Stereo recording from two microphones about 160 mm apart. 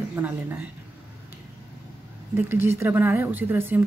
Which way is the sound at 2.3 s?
15° right (ahead or behind).